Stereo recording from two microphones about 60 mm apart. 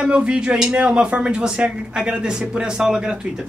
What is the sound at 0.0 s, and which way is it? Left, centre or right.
Speech, centre.